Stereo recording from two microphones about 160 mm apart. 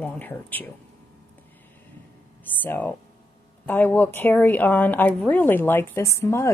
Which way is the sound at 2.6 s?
10° left (ahead or behind).